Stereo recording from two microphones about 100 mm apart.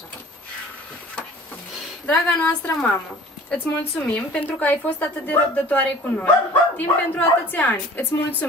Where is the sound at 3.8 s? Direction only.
15° left (ahead or behind).